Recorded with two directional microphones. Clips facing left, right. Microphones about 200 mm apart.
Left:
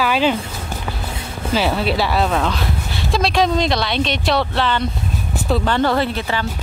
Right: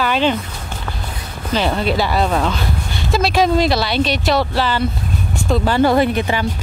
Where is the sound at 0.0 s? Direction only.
5° left (ahead or behind).